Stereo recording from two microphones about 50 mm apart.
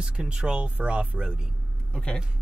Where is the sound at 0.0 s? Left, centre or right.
Centre.